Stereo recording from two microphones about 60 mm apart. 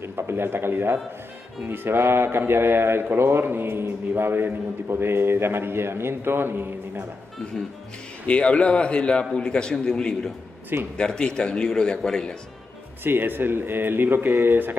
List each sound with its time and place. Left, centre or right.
0.0 s speech: right
7.6 s a man's voice: centre
8.3 s a man's voice: centre
13.0 s speech: right